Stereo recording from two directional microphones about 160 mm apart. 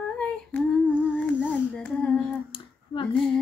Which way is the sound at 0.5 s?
10° left (ahead or behind).